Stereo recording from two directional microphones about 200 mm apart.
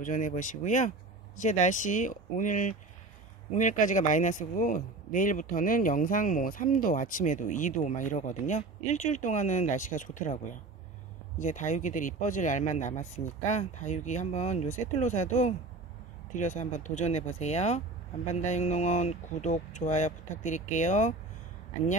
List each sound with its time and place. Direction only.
0.0 s speech: 40° left (ahead or behind)